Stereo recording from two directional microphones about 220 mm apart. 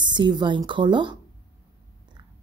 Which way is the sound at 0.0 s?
20° right (ahead or behind).